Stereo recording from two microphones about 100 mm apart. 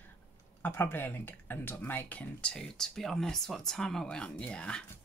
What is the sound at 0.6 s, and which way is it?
Speech, 20° left (ahead or behind).